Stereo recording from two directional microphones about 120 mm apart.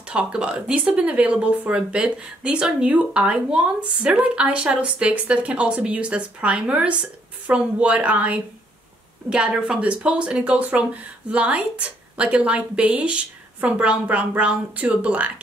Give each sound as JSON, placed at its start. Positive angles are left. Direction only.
{"t": 0.1, "sound": "speech", "side_deg": -10}